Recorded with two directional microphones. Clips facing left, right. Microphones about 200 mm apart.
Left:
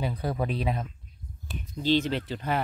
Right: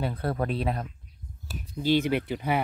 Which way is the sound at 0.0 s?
Centre (ahead or behind).